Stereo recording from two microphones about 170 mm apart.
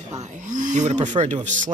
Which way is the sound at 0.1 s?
45° right (ahead or behind).